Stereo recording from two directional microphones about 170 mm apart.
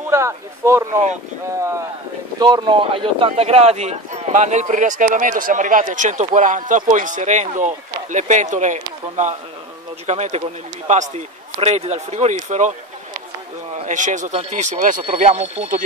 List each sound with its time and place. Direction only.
0.1 s speech: 15° right (ahead or behind)
2.4 s a man's voice: 25° right (ahead or behind); by 12.7 s 45° right (ahead or behind)
13.7 s a man's voice: 45° right (ahead or behind)